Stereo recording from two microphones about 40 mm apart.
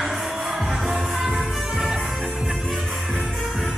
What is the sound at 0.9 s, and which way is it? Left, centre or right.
Music, centre.